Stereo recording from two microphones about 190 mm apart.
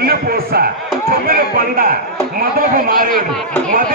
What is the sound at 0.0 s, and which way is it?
Speech, 50° right (ahead or behind).